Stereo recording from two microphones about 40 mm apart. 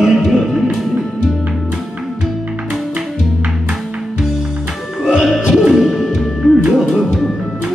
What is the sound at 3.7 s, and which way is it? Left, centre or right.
Music, centre.